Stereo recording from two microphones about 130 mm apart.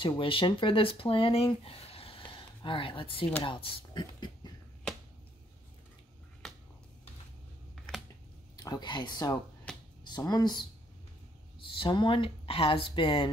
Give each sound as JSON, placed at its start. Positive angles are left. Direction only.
{"t": 0.0, "sound": "speech", "side_deg": 40}
{"t": 6.4, "sound": "finger snapping", "side_deg": 5}
{"t": 7.7, "sound": "a sound", "side_deg": 5}
{"t": 8.6, "sound": "speech", "side_deg": 35}
{"t": 9.7, "sound": "a sound", "side_deg": 5}
{"t": 10.0, "sound": "speech", "side_deg": 30}